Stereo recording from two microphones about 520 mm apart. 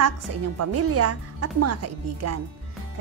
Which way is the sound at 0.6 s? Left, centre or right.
Right.